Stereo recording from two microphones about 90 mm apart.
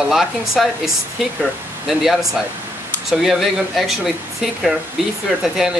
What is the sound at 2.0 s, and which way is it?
Speech, centre (ahead or behind).